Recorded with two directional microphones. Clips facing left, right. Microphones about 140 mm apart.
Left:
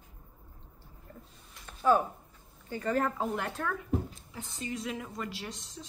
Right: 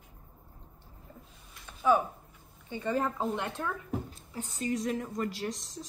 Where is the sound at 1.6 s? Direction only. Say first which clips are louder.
Even; 10° right (ahead or behind).